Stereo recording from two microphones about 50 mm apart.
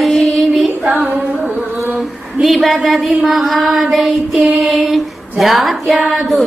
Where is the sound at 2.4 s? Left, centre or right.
Centre.